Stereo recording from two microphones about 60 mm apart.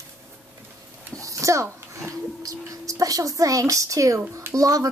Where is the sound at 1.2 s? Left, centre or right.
Right.